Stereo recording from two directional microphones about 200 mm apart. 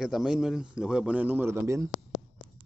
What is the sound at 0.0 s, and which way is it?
Speech, centre (ahead or behind).